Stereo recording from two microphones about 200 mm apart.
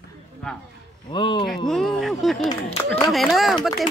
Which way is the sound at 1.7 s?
Centre (ahead or behind).